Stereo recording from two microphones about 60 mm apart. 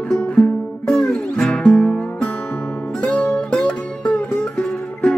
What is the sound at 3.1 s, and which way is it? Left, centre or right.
Music, centre.